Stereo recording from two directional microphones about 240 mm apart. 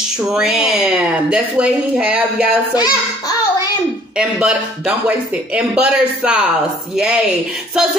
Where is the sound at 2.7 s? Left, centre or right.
Centre.